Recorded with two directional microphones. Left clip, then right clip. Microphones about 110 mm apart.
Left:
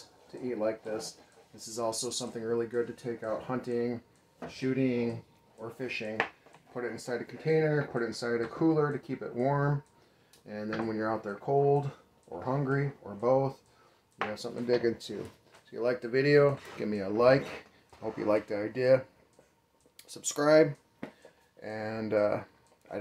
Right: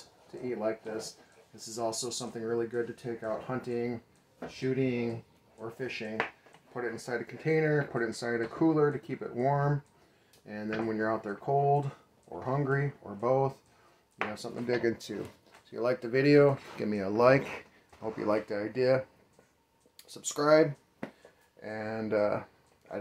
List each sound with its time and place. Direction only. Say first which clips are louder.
1.8 s speech: left 1 dB; 30° right (ahead or behind)
15.7 s speech: even; 50° right (ahead or behind)
18.0 s speech: left 1 dB; 5° right (ahead or behind)
20.0 s speech: left 1 dB; 10° left (ahead or behind)